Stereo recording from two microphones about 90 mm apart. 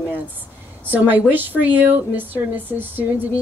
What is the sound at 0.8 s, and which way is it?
Speech, 20° right (ahead or behind).